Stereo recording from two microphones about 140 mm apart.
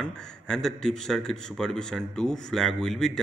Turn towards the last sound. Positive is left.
turn(degrees=5)  # may be behind; listen again after turning